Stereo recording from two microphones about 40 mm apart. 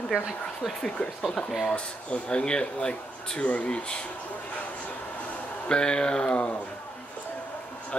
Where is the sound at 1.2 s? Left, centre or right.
Centre.